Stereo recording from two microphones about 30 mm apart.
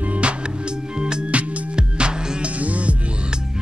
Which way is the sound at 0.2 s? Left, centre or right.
Right.